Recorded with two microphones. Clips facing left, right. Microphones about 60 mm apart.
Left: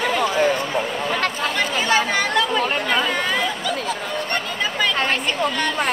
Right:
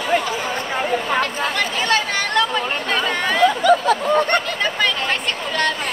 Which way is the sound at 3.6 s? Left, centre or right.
Right.